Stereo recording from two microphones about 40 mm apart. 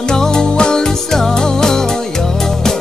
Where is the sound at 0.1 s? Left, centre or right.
Centre.